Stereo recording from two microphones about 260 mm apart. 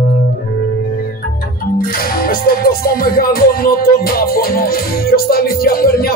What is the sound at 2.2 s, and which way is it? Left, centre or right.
Music, left.